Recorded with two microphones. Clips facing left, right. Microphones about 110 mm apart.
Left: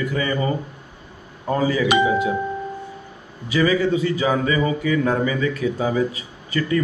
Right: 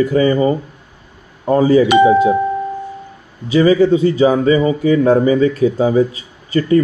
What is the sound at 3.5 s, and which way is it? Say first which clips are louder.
Speech: right 8 dB; 30° right (ahead or behind).